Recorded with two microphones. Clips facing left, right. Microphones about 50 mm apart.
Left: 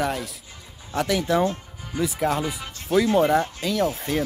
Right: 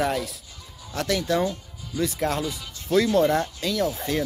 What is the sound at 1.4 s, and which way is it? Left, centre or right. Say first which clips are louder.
Music: left 3 dB; left.